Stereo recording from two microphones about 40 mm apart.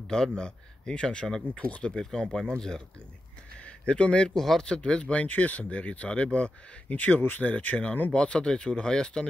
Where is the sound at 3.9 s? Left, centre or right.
Left.